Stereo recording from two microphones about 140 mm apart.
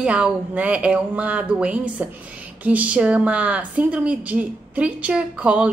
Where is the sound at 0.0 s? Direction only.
10° right (ahead or behind).